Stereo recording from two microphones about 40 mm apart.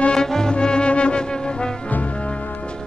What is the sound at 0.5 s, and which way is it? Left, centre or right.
Brass instrument, left.